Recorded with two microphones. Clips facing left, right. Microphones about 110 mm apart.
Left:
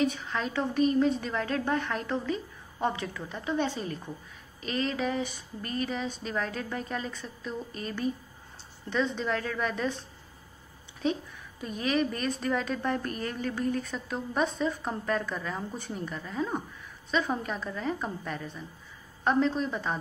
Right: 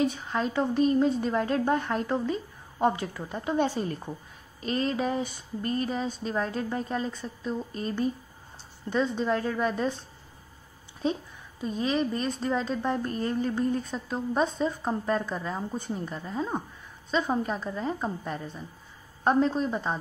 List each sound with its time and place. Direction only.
0.0 s speech: 35° right (ahead or behind)
11.6 s speech: 25° right (ahead or behind)
19.2 s speech: 35° right (ahead or behind)